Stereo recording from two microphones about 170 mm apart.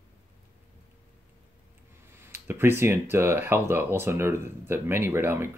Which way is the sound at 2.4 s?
15° right (ahead or behind).